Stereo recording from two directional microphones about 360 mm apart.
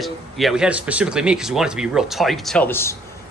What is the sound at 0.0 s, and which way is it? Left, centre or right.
Speech, centre.